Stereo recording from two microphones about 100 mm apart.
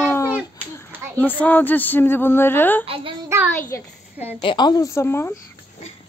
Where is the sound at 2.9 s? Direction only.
60° right (ahead or behind).